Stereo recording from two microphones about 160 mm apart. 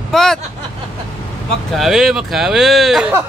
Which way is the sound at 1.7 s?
Centre (ahead or behind).